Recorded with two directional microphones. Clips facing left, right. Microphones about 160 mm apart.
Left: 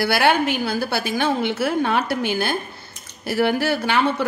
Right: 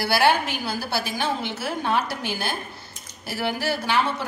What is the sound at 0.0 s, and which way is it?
A woman's voice, 60° left (ahead or behind).